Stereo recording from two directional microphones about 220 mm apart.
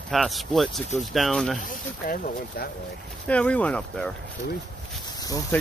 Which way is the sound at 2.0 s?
40° left (ahead or behind).